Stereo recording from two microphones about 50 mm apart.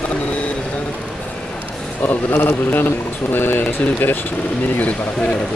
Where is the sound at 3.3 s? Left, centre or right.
Left.